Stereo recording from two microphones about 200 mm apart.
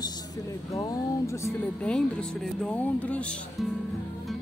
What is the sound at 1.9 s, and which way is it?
Speech, 5° left (ahead or behind).